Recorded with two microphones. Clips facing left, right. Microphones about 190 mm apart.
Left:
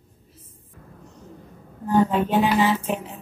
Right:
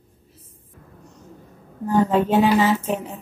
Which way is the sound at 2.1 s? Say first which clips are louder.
Right 3 dB; 45° right (ahead or behind).